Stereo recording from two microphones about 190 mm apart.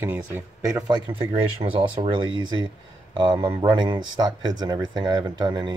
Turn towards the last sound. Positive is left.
turn(degrees=-25)  # may be behind; listen again after turning